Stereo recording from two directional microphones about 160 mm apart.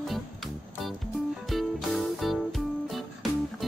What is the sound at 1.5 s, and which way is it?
Music, centre (ahead or behind).